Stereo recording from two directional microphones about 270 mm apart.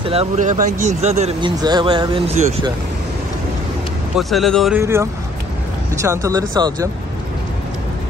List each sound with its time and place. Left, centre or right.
0.0 s speech: right
4.1 s speech: centre